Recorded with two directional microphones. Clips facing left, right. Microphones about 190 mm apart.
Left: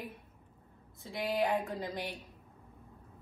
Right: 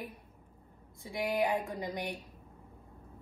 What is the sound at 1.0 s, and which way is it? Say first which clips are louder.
A woman's voice: right 1 dB; 15° right (ahead or behind).